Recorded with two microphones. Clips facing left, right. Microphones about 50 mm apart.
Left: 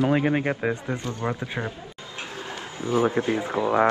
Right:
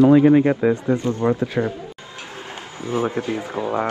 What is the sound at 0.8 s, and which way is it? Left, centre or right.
Speech, right.